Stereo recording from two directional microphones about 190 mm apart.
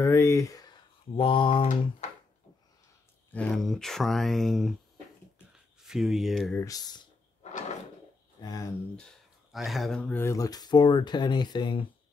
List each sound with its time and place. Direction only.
0.0 s a sound: 15° left (ahead or behind)
1.1 s typing: 25° left (ahead or behind)
3.3 s speech: 5° left (ahead or behind)
5.8 s speech: centre (ahead or behind)
6.6 s speech: 20° left (ahead or behind)
7.4 s drawer open or close: 35° left (ahead or behind)
8.4 s speech: 20° left (ahead or behind)
9.5 s speech: centre (ahead or behind); by 11.9 s 25° left (ahead or behind)